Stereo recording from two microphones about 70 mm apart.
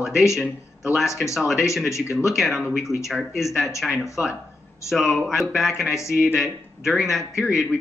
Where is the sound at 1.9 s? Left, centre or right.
Left.